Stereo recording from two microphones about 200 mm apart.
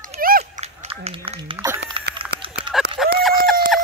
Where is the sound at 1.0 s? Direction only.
30° right (ahead or behind).